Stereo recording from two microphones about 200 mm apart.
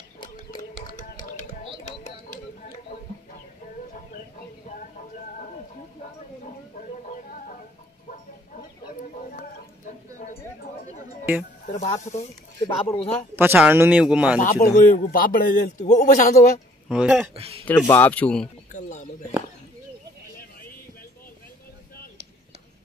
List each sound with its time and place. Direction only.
2.2 s a sound: 35° left (ahead or behind)
10.1 s chatter: 35° left (ahead or behind)
11.6 s speech: 35° left (ahead or behind)
12.5 s speech: 20° left (ahead or behind)
13.4 s speech: 10° right (ahead or behind)
14.4 s a man's voice: 45° left (ahead or behind)
16.9 s speech: 5° right (ahead or behind)
17.6 s speech: 10° left (ahead or behind)
18.7 s a sound: 40° left (ahead or behind)